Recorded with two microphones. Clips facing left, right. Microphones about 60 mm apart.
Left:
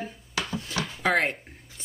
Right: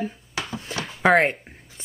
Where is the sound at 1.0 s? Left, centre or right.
Right.